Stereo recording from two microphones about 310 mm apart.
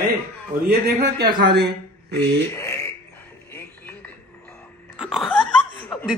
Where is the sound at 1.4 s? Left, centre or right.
Right.